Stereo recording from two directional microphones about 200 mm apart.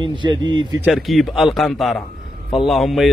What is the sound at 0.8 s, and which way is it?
Speech, centre (ahead or behind).